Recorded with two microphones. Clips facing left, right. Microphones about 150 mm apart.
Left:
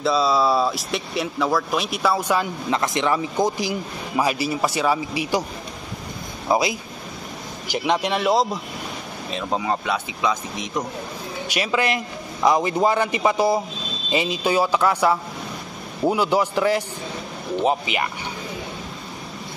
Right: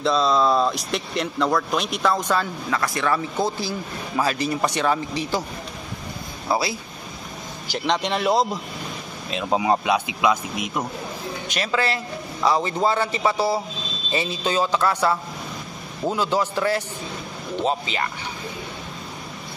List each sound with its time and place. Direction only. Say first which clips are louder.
0.0 s speech: even; 5° left (ahead or behind)
2.7 s speech: left 2 dB; 20° left (ahead or behind)
6.5 s speech: left 3 dB; 15° left (ahead or behind); by 10.7 s 10° right (ahead or behind)
11.4 s speech: left 2 dB; 10° left (ahead or behind)